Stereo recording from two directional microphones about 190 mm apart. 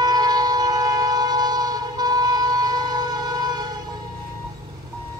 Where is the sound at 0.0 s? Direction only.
20° right (ahead or behind).